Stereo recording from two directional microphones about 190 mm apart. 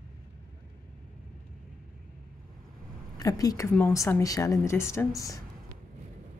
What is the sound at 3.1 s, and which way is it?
Speech, 20° left (ahead or behind).